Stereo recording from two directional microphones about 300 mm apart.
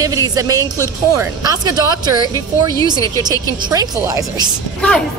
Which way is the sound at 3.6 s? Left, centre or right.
Centre.